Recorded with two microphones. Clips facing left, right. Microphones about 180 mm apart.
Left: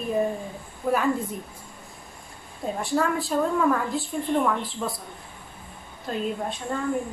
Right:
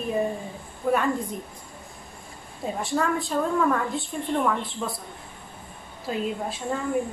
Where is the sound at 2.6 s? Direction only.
Centre (ahead or behind).